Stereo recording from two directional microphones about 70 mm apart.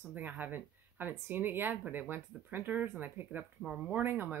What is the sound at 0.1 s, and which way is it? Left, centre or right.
Speech, right.